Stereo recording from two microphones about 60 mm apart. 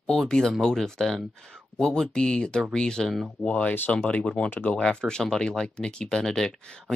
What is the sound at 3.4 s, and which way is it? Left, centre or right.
Speech, left.